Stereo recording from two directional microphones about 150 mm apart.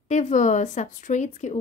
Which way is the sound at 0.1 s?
55° left (ahead or behind).